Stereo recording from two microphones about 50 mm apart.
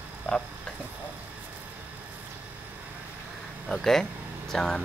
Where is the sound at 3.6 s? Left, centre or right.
Centre.